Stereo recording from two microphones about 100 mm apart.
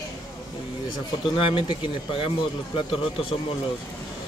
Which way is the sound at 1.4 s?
60° left (ahead or behind).